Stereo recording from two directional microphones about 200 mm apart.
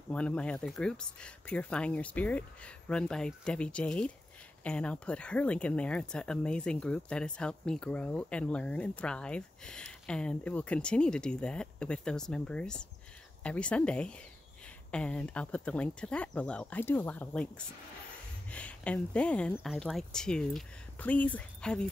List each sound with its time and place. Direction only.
0.1 s speech: 5° left (ahead or behind)